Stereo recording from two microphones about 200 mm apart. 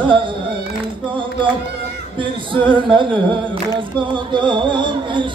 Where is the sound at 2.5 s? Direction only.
25° right (ahead or behind).